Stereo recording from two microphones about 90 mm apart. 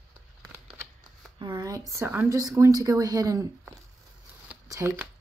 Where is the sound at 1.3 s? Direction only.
50° right (ahead or behind).